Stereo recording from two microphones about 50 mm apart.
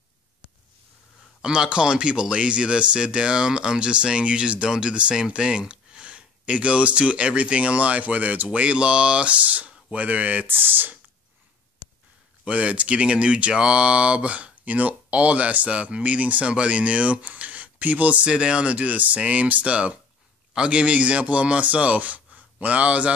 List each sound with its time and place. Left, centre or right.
1.4 s speech: centre; by 11.0 s right
12.4 s speech: right